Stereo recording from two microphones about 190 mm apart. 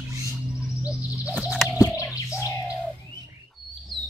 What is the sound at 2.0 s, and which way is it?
Bird, 5° right (ahead or behind).